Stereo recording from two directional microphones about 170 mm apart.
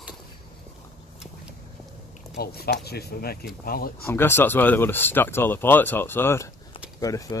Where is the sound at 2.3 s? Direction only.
65° left (ahead or behind).